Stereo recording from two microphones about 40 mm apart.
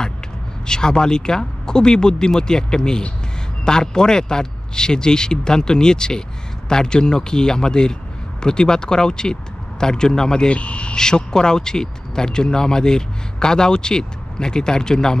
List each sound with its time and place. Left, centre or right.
0.7 s a man's voice: centre
10.5 s speech: left
11.0 s speech: centre